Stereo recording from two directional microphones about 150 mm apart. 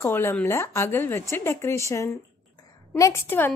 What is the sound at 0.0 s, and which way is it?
A woman's voice, 15° left (ahead or behind).